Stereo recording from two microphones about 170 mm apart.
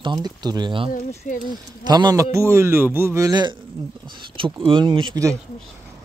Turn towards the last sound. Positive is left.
turn(degrees=-25)  # may be behind; listen again after turning